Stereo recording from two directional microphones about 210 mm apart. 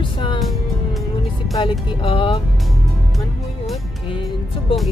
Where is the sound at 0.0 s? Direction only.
20° left (ahead or behind).